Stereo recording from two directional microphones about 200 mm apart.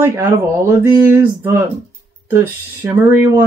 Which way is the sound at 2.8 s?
10° right (ahead or behind).